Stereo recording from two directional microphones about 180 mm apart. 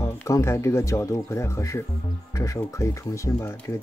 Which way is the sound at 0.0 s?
15° left (ahead or behind).